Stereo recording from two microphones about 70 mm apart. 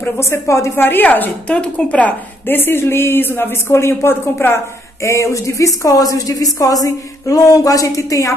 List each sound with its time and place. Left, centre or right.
0.2 s speech: left
5.0 s a woman's voice: left